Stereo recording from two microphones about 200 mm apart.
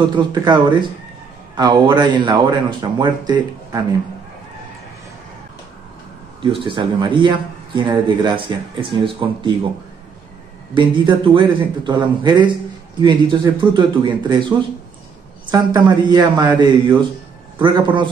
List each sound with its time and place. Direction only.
0.0 s speech: 20° right (ahead or behind)
6.4 s speech: 25° right (ahead or behind)
10.7 s speech: 25° right (ahead or behind)
15.5 s speech: 20° right (ahead or behind)